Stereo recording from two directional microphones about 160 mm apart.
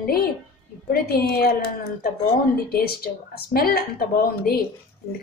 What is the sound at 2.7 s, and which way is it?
A woman's voice, 75° left (ahead or behind).